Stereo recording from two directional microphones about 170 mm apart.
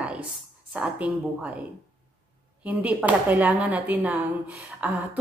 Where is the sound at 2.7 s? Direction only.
10° right (ahead or behind).